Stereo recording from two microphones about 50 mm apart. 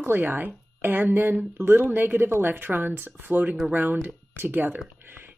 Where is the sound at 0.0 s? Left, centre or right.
Right.